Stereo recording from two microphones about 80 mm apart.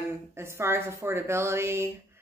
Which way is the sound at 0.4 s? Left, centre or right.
Right.